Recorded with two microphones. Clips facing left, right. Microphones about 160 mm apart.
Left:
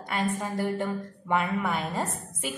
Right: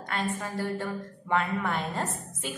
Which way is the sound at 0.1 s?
15° left (ahead or behind).